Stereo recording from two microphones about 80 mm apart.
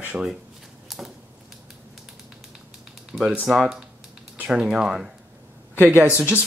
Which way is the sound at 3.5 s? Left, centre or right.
Centre.